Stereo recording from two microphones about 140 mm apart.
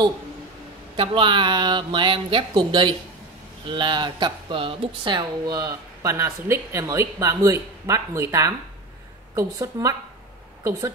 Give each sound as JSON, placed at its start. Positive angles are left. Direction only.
{"t": 0.9, "sound": "speech", "side_deg": -35}